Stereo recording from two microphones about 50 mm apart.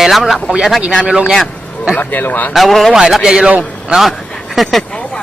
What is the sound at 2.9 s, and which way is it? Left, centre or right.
Speech, centre.